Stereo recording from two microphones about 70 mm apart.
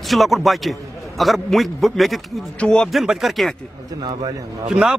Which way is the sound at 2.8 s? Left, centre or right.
Centre.